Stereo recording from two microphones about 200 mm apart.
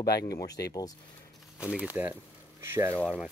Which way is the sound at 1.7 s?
10° right (ahead or behind).